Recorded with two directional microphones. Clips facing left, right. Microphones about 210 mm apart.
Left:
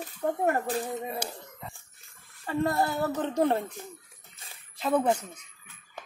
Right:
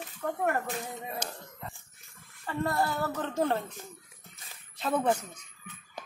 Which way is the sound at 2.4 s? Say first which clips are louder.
Left 3 dB; 20° left (ahead or behind).